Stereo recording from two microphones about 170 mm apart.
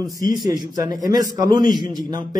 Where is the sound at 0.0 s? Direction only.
20° right (ahead or behind).